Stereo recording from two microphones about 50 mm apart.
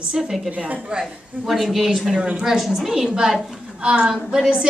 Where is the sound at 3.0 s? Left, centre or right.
Centre.